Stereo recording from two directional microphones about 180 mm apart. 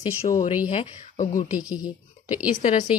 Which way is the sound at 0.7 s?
40° left (ahead or behind).